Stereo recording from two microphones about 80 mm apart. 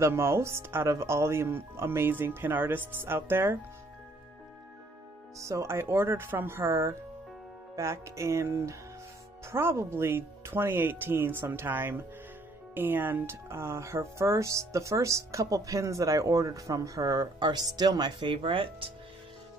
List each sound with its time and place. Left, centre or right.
0.0 s speech: right
5.4 s speech: right